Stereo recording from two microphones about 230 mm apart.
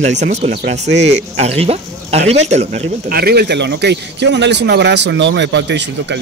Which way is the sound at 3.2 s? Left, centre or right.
Right.